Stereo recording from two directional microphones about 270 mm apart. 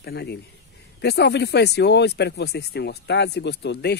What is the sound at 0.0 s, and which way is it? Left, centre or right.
Speech, left.